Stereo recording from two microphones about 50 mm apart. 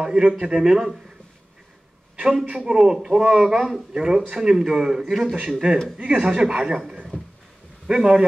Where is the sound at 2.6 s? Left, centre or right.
Centre.